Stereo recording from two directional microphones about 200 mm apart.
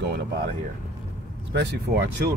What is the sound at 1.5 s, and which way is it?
Speech, 60° right (ahead or behind).